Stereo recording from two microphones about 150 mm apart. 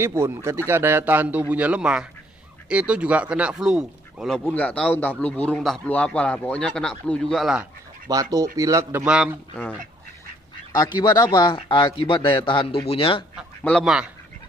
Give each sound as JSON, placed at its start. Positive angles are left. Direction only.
{"t": 0.0, "sound": "speech", "side_deg": -15}
{"t": 4.5, "sound": "a man's voice", "side_deg": 10}
{"t": 8.1, "sound": "a man's voice", "side_deg": -25}
{"t": 9.0, "sound": "a man's voice", "side_deg": -5}
{"t": 10.7, "sound": "speech", "side_deg": 30}
{"t": 13.7, "sound": "a man's voice", "side_deg": 5}